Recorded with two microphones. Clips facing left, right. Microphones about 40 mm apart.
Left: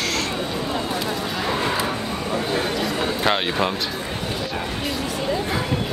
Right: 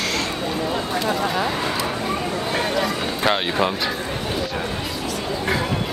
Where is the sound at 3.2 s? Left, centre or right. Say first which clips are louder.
Right 2 dB; centre.